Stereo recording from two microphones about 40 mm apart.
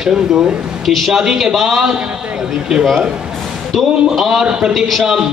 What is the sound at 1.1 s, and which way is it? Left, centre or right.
Speech, centre.